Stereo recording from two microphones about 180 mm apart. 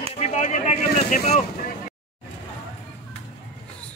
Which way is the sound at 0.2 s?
40° left (ahead or behind).